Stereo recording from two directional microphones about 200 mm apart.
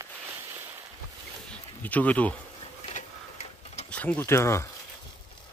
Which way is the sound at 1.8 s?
5° left (ahead or behind).